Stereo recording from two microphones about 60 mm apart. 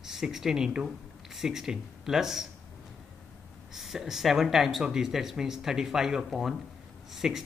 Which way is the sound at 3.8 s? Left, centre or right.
Centre.